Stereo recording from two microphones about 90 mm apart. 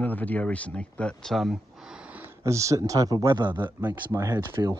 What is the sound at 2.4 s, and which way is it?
Speech, 35° right (ahead or behind).